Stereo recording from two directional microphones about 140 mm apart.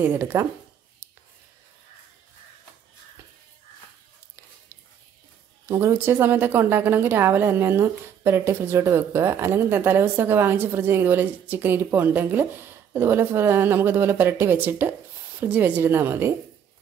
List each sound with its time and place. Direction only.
0.0 s a woman's voice: 15° right (ahead or behind)
5.7 s a woman's voice: 20° right (ahead or behind)